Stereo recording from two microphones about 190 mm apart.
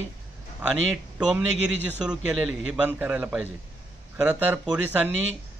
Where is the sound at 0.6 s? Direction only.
10° right (ahead or behind).